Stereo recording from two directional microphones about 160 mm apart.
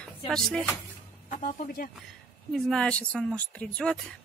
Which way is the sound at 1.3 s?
55° left (ahead or behind).